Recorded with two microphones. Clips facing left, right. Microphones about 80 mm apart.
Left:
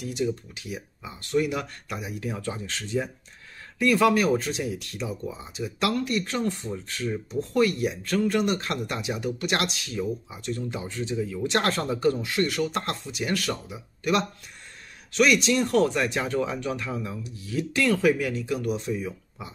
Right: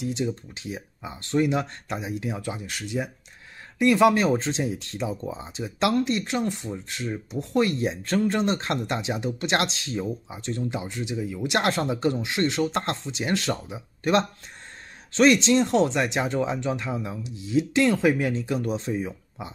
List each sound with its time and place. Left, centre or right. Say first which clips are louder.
0.0 s speech: even; right